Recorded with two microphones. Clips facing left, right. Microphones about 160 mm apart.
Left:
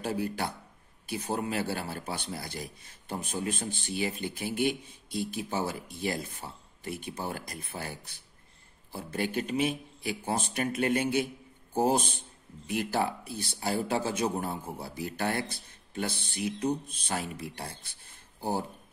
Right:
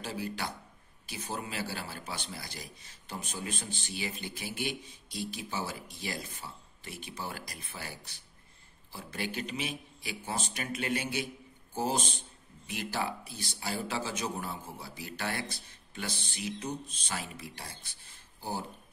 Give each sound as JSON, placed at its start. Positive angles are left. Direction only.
{"t": 0.0, "sound": "a man's voice", "side_deg": 55}